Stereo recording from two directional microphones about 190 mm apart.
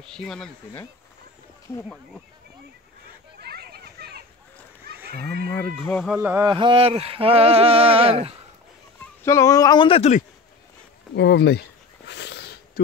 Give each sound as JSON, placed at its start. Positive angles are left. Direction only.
{"t": 0.0, "sound": "speech", "side_deg": 0}
{"t": 3.3, "sound": "children playing", "side_deg": -55}
{"t": 4.8, "sound": "livestock", "side_deg": -55}
{"t": 5.9, "sound": "speech", "side_deg": 0}
{"t": 6.4, "sound": "a sound", "side_deg": -25}
{"t": 9.0, "sound": "speech", "side_deg": 15}
{"t": 11.1, "sound": "speech", "side_deg": 60}
{"t": 12.1, "sound": "a sound", "side_deg": 65}